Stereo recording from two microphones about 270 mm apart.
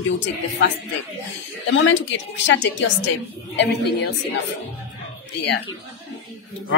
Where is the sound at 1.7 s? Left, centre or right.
Left.